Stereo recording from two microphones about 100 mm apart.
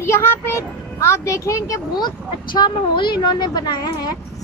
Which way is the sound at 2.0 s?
45° left (ahead or behind).